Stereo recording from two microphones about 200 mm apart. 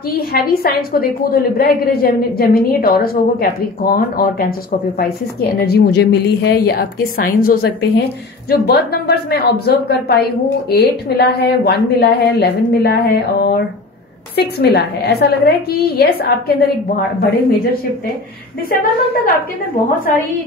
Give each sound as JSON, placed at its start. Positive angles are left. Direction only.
{"t": 0.1, "sound": "a woman's voice", "side_deg": 50}
{"t": 18.7, "sound": "a woman's voice", "side_deg": 45}